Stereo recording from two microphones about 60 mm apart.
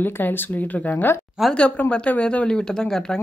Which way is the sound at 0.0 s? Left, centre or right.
Left.